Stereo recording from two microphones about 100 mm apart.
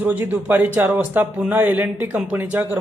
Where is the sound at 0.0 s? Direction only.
20° right (ahead or behind).